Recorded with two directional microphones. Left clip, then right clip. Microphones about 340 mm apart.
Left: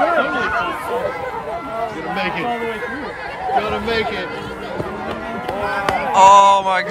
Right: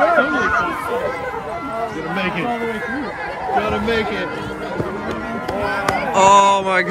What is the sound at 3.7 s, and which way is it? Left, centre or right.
Speech, left.